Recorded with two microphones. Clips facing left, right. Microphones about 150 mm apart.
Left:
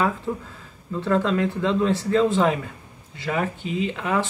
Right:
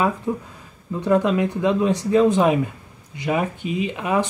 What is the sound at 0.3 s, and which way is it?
Speech, 15° right (ahead or behind).